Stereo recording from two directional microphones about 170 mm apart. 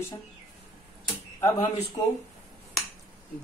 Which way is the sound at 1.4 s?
20° left (ahead or behind).